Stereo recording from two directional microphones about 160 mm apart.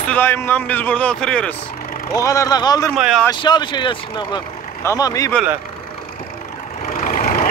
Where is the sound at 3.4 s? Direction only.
25° left (ahead or behind).